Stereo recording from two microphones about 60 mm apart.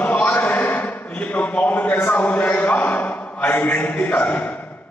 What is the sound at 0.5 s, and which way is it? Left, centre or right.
A man's voice, left.